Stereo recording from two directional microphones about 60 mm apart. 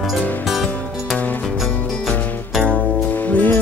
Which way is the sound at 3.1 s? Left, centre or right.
Left.